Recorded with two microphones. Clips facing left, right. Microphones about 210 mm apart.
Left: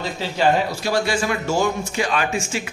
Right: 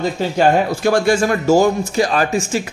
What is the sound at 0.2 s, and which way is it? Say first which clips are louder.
A man's voice: right 4 dB; 50° right (ahead or behind).